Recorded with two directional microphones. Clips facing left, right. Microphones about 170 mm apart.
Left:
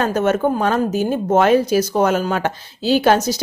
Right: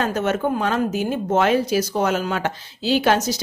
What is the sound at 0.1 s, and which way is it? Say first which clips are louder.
Speech: left 4 dB; 45° left (ahead or behind).